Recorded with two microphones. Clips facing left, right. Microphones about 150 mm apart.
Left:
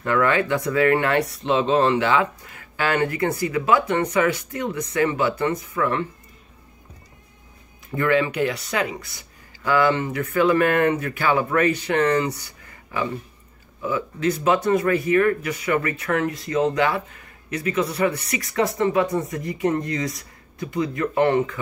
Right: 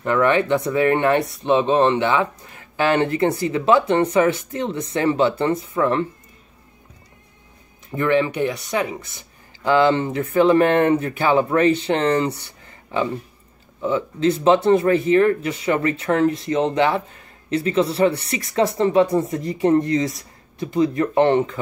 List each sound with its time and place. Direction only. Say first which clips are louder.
0.0 s speech: right 3 dB; 25° right (ahead or behind)
9.7 s speech: right 3 dB; 25° right (ahead or behind)